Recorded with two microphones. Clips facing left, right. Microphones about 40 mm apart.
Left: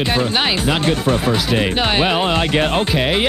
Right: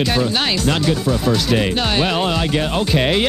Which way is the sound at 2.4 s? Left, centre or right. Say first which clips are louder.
Left 3 dB; left.